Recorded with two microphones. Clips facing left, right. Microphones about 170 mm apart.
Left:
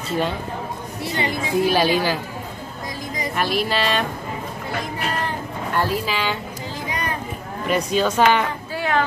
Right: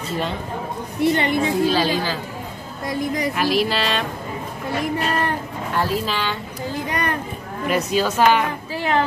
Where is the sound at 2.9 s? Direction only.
65° right (ahead or behind).